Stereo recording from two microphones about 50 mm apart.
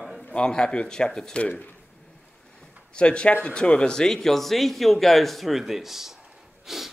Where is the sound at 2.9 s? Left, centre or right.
Centre.